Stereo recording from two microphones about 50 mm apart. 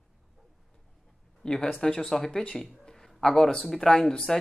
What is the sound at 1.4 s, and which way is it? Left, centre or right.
Speech, centre.